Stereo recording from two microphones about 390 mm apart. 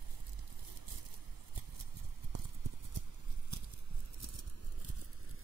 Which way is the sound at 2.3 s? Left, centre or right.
Right.